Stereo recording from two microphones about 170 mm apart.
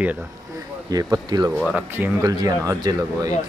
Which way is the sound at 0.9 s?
20° right (ahead or behind).